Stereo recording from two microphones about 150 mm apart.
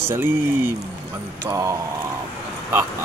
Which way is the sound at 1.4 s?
20° right (ahead or behind).